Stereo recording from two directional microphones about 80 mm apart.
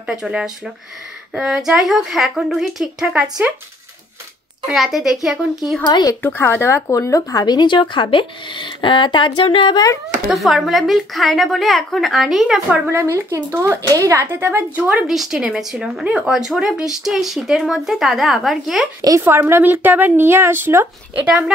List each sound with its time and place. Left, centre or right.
0.0 s speech: centre
4.6 s speech: centre
5.9 s speech: left
6.2 s speech: left
10.2 s speech: centre
12.9 s speech: right
13.8 s speech: right
14.2 s speech: right
15.0 s speech: centre
18.9 s speech: right
19.2 s speech: right